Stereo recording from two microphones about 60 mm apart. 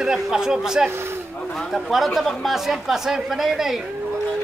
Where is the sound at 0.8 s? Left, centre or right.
Right.